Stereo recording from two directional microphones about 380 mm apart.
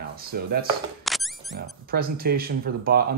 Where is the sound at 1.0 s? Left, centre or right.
Centre.